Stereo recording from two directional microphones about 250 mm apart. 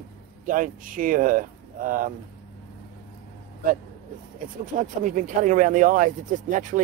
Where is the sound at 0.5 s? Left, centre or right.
Right.